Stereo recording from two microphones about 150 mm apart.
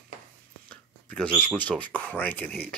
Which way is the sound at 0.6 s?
10° left (ahead or behind).